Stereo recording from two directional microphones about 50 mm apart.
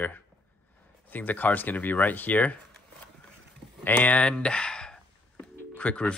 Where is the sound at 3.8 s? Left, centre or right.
Left; by 5.4 s centre.